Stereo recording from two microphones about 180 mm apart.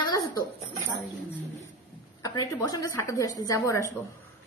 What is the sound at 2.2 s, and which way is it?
A woman's voice, 20° left (ahead or behind).